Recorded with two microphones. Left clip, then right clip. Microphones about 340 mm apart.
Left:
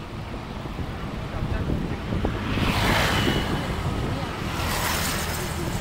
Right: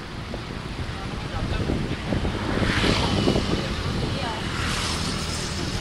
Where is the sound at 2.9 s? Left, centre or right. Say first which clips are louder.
Left 1 dB; left.